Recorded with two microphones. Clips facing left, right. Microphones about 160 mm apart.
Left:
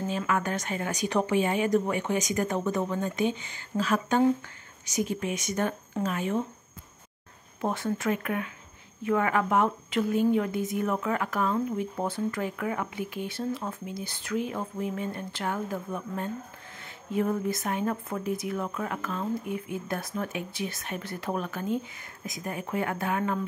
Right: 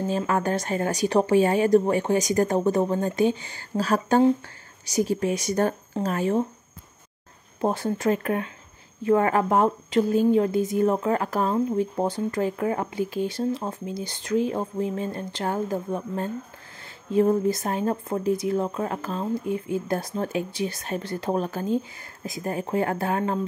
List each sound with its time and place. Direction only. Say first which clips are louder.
0.1 s a woman's voice: right 5 dB; 35° right (ahead or behind)
7.6 s a woman's voice: right 5 dB; 30° right (ahead or behind)